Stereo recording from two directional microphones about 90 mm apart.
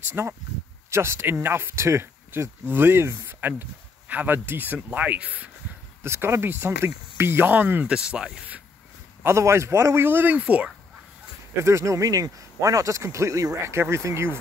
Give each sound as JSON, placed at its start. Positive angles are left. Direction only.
{"t": 0.1, "sound": "speech", "side_deg": -25}
{"t": 6.0, "sound": "speech", "side_deg": -30}
{"t": 7.9, "sound": "speech", "side_deg": -10}
{"t": 9.2, "sound": "speech", "side_deg": -30}
{"t": 11.6, "sound": "speech", "side_deg": -35}